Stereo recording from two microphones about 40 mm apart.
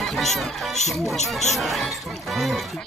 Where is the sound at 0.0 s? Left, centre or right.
Centre.